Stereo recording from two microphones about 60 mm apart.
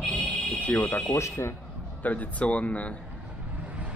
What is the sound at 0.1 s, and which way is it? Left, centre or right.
Music, left.